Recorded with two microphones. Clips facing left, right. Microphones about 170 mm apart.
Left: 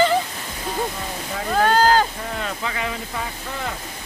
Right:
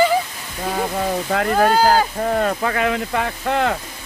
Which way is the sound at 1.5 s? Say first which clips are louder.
Right 1 dB; 10° right (ahead or behind).